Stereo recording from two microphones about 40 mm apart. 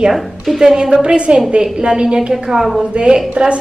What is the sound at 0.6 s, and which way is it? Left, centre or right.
A woman's voice, centre.